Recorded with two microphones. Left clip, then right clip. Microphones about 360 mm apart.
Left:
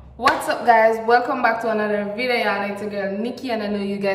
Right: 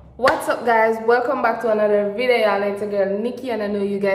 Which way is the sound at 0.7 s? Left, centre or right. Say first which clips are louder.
Left 2 dB; centre.